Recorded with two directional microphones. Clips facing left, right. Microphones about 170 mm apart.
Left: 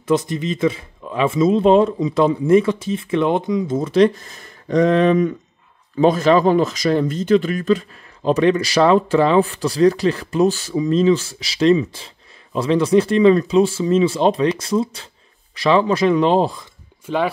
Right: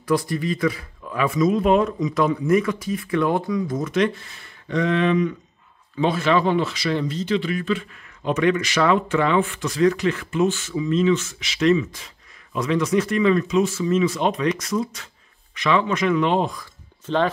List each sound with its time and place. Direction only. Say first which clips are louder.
0.0 s speech: left 3 dB; 20° left (ahead or behind)
17.0 s speech: left 1 dB; 10° left (ahead or behind)